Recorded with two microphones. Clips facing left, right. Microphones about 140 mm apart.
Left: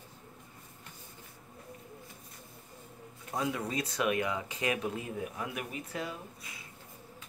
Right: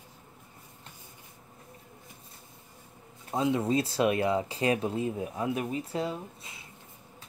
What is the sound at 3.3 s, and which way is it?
Speech, 25° right (ahead or behind).